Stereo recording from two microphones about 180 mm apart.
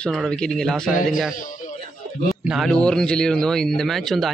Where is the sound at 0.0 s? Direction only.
Centre (ahead or behind).